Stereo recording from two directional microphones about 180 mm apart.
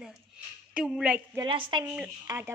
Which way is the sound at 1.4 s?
25° right (ahead or behind).